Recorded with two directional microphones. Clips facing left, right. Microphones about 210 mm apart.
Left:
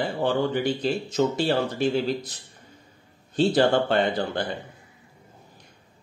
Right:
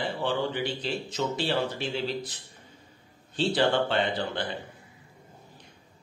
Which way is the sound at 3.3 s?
45° left (ahead or behind).